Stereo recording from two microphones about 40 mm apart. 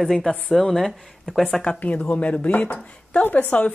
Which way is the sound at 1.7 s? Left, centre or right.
Left.